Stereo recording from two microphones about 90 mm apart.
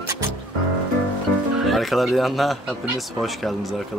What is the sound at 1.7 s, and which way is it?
Speech, centre (ahead or behind).